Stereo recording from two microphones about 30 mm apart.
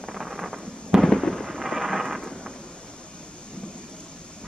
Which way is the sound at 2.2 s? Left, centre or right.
Left.